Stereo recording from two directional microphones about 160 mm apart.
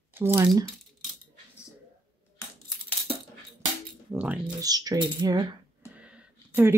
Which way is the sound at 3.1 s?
35° right (ahead or behind).